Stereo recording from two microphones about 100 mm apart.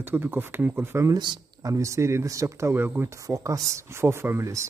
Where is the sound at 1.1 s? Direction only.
45° right (ahead or behind).